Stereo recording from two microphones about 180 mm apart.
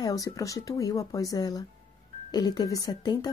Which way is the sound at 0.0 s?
20° left (ahead or behind).